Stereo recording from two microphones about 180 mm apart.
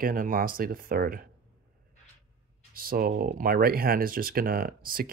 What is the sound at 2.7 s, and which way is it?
Speech, 55° right (ahead or behind).